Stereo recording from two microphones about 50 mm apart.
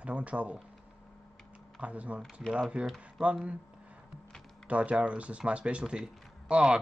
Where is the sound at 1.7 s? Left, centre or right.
Right.